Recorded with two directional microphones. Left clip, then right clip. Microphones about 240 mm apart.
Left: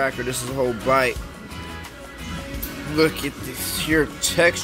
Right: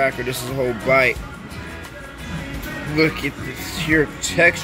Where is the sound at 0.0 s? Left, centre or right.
Centre.